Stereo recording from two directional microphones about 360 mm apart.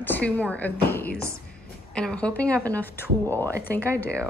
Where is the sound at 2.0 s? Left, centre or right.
Centre.